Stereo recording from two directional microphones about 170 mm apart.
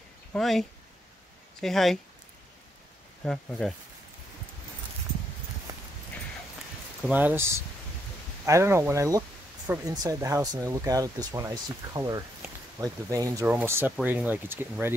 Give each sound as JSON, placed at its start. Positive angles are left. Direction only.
{"t": 0.3, "sound": "speech", "side_deg": 0}
{"t": 3.3, "sound": "speech", "side_deg": 5}
{"t": 5.7, "sound": "clip-clop", "side_deg": -20}
{"t": 7.0, "sound": "speech", "side_deg": -10}